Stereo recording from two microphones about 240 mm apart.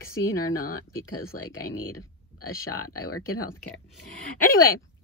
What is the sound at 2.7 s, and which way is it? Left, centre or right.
Speech, left.